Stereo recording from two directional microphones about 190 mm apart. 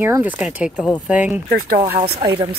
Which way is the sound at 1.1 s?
5° right (ahead or behind).